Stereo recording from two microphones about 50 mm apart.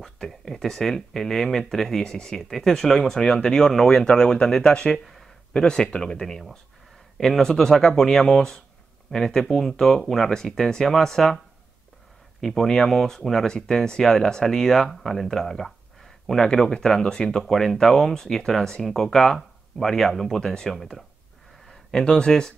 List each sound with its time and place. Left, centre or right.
0.0 s speech: centre
5.0 s a sound: centre
5.5 s speech: centre